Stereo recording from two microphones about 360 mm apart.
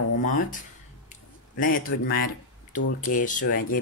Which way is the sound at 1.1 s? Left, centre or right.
Left.